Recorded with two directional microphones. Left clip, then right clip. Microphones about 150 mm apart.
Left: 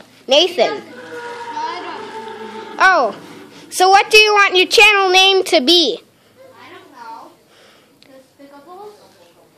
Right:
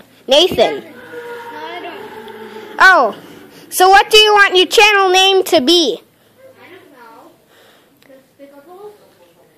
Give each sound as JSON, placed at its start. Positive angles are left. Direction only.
{"t": 0.3, "sound": "a woman's voice", "side_deg": -15}
{"t": 1.6, "sound": "children playing", "side_deg": 35}
{"t": 2.6, "sound": "a woman's voice", "side_deg": -15}